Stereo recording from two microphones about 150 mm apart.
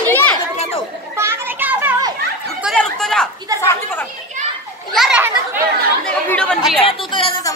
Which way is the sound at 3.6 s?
15° left (ahead or behind).